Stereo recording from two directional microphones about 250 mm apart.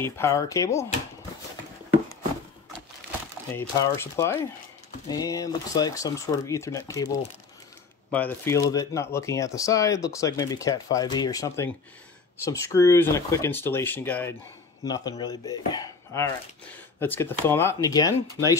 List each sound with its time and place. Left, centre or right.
0.0 s speech: centre
3.5 s speech: centre
8.1 s speech: centre